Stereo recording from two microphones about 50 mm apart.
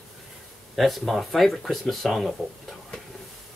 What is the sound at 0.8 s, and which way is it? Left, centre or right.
Speech, centre.